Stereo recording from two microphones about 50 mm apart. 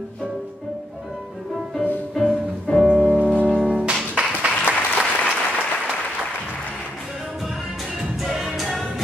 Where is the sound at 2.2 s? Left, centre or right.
Centre.